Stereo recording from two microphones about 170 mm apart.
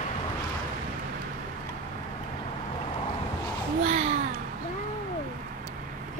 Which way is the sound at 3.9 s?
40° right (ahead or behind).